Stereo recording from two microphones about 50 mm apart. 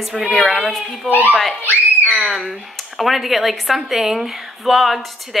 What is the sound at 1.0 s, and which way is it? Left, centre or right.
Speech, right.